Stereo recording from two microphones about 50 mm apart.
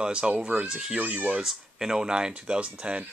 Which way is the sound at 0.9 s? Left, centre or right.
Right.